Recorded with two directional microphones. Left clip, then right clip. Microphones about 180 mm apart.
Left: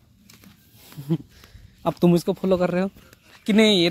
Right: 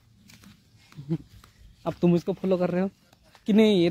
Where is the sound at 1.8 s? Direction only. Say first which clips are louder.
Left 5 dB; 35° left (ahead or behind); by 2.9 s 10° left (ahead or behind).